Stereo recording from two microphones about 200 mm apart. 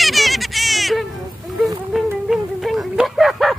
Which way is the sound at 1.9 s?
Centre (ahead or behind).